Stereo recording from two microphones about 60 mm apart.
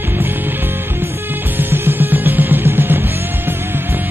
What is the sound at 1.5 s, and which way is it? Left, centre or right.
Music, right.